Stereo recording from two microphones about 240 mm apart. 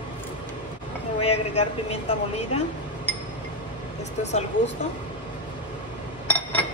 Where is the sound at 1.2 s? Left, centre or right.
Left.